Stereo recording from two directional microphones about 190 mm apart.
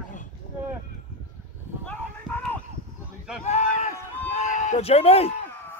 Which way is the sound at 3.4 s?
35° left (ahead or behind).